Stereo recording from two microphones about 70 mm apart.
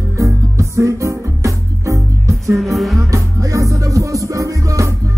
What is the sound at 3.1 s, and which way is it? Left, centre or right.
Music, right.